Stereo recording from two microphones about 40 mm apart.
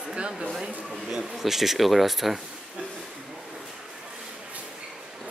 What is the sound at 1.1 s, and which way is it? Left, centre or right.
Speech, centre.